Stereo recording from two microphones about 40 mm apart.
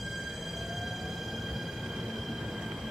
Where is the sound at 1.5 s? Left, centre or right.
Centre.